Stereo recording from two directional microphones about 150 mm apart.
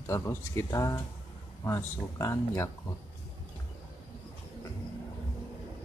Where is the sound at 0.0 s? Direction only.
20° left (ahead or behind).